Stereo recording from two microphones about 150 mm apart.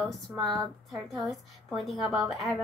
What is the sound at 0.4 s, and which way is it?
A woman's voice, centre (ahead or behind).